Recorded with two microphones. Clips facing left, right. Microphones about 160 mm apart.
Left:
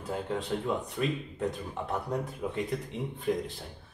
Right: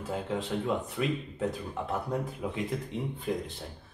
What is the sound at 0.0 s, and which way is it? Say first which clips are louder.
Speech: even; centre (ahead or behind).